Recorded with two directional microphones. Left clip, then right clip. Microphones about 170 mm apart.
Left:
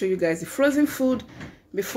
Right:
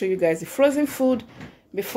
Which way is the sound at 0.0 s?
20° right (ahead or behind).